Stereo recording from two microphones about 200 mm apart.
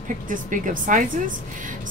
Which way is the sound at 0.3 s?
40° right (ahead or behind).